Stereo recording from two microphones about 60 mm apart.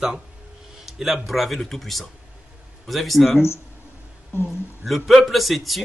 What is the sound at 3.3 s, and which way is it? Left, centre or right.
Speech, left.